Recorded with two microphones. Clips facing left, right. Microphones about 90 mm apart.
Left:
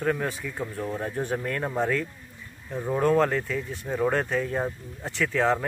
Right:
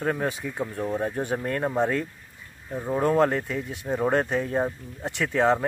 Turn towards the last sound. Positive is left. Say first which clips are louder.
# right 2 dB
turn(degrees=-25)  # may be behind; listen again after turning